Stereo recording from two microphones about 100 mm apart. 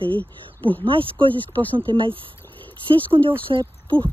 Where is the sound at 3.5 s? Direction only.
50° right (ahead or behind).